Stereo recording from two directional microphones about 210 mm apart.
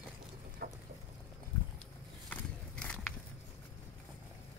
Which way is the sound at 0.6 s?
45° right (ahead or behind).